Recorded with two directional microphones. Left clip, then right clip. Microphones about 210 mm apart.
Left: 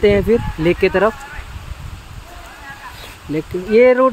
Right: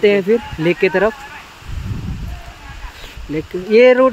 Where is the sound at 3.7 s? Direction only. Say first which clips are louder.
Right 1 dB; 15° right (ahead or behind).